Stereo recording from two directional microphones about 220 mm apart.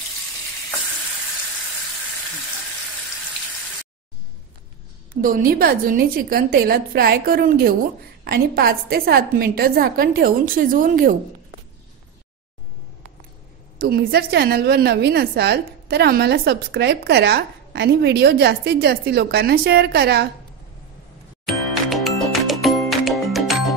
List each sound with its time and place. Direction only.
5.1 s a woman's voice: 40° right (ahead or behind)
13.7 s a woman's voice: 45° right (ahead or behind)
21.5 s music: centre (ahead or behind)